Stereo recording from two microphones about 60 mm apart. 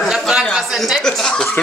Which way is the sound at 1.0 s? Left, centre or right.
Centre.